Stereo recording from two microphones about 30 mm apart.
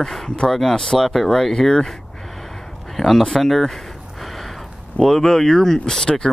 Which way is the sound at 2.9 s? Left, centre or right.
Centre.